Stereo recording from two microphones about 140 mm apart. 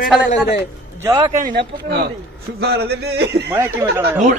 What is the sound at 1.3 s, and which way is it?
Speech, 75° right (ahead or behind).